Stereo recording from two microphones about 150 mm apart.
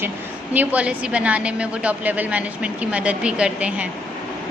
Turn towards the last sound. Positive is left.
turn(degrees=-10)  # may be behind; listen again after turning